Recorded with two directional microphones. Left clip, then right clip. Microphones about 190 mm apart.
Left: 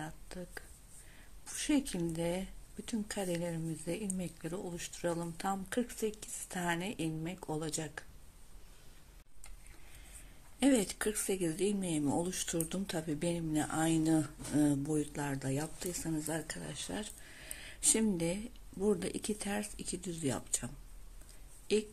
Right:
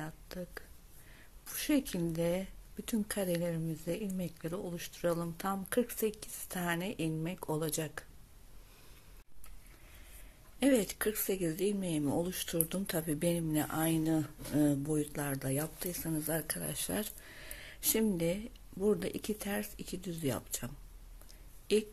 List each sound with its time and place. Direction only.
0.0 s a sound: 15° right (ahead or behind)
1.4 s speech: 15° right (ahead or behind)
10.6 s speech: 10° right (ahead or behind)
14.6 s speech: 10° right (ahead or behind); by 17.3 s 35° right (ahead or behind)
17.3 s speech: 15° right (ahead or behind)